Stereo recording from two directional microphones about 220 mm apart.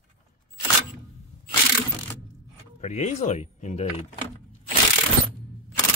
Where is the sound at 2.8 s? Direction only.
30° left (ahead or behind).